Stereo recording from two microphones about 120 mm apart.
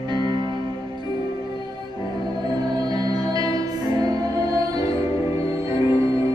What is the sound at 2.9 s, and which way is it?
Music, 30° right (ahead or behind).